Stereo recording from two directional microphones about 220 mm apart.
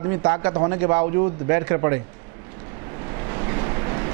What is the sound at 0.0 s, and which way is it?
A man's voice, 20° right (ahead or behind).